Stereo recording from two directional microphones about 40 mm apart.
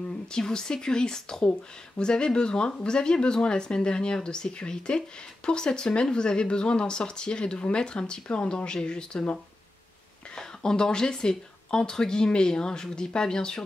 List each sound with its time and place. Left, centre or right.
0.3 s speech: centre
10.3 s speech: centre